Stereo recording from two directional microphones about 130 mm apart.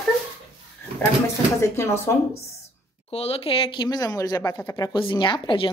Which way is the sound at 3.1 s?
50° left (ahead or behind).